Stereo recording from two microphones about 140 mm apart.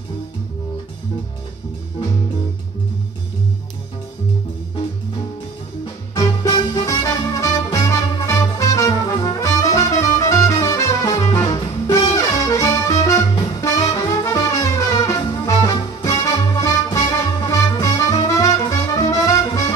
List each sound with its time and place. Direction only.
6.1 s music: 25° left (ahead or behind)